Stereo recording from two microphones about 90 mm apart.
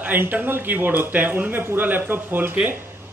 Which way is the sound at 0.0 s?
20° right (ahead or behind).